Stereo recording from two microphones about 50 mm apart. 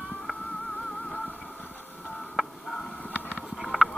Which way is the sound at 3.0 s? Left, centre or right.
Left.